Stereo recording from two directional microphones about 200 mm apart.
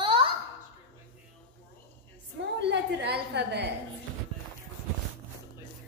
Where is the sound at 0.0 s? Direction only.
25° right (ahead or behind).